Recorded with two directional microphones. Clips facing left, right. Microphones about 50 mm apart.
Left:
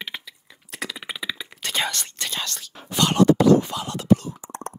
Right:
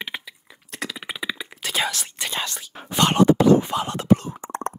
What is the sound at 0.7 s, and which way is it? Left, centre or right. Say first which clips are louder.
Whispering: right 1 dB; centre.